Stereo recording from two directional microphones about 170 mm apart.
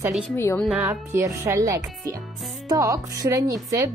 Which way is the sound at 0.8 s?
20° right (ahead or behind).